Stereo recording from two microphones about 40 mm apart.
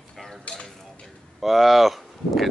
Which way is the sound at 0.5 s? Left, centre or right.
Left.